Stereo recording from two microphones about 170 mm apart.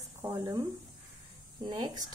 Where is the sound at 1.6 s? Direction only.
25° right (ahead or behind).